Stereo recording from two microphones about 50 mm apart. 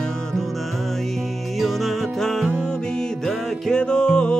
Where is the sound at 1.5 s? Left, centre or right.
Centre.